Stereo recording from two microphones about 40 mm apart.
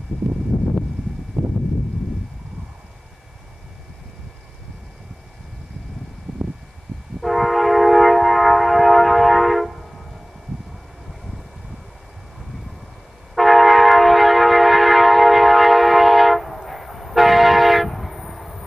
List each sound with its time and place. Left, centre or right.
1.4 s a sound: centre
7.2 s train: centre
13.3 s train: centre